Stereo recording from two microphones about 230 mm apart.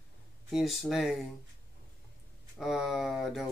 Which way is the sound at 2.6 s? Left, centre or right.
Centre.